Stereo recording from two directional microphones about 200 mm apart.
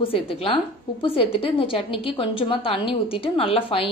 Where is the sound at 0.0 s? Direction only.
25° left (ahead or behind).